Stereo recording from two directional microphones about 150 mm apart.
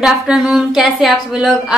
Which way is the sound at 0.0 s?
5° right (ahead or behind).